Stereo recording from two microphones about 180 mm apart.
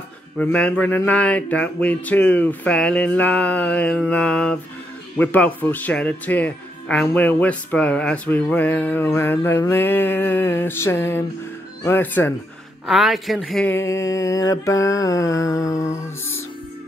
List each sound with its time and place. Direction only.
0.4 s speech: 5° left (ahead or behind)
12.8 s speech: centre (ahead or behind); by 15.9 s 20° left (ahead or behind)